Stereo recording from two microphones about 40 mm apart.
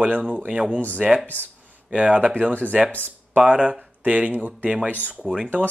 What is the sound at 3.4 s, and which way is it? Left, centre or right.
Speech, right.